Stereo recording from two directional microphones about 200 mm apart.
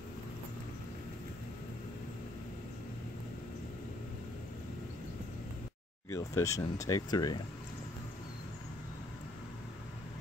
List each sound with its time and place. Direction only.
6.1 s speech: 15° left (ahead or behind)